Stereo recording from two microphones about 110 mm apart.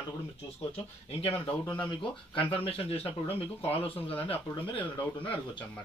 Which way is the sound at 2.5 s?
60° left (ahead or behind).